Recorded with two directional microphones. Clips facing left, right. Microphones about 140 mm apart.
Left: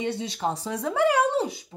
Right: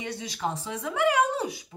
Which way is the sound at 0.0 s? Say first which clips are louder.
Left 4 dB; 25° left (ahead or behind).